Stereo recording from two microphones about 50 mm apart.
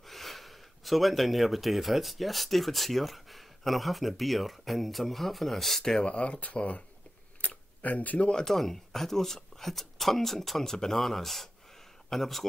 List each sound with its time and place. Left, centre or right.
0.0 s speech: centre
6.0 s speech: left
7.4 s a sound: left
8.3 s speech: centre